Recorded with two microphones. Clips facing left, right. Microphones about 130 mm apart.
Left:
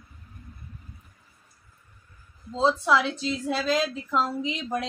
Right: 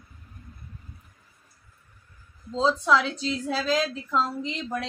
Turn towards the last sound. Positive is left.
turn(degrees=10)  # may be behind; listen again after turning